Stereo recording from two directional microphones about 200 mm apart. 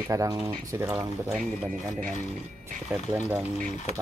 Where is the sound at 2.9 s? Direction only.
10° right (ahead or behind).